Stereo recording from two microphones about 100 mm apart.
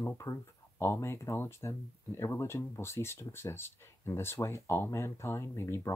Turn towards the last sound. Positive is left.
turn(degrees=25)  # may be behind; listen again after turning